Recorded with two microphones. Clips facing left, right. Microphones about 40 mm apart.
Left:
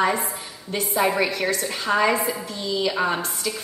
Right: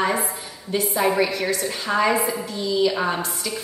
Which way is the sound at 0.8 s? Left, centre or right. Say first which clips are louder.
Right 1 dB; centre.